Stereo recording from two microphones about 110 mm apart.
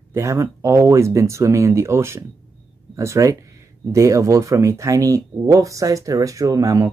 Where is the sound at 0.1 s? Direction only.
25° right (ahead or behind).